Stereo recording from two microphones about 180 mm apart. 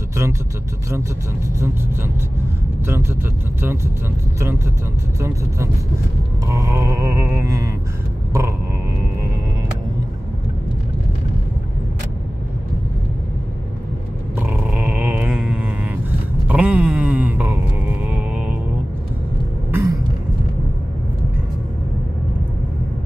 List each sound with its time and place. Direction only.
0.1 s vehicle: 15° right (ahead or behind)
2.9 s music: 15° right (ahead or behind)
6.5 s music: 15° right (ahead or behind)
14.4 s dog: 10° right (ahead or behind)
16.4 s a sound: 10° right (ahead or behind)
18.0 s music: 5° right (ahead or behind)
19.7 s music: 15° right (ahead or behind)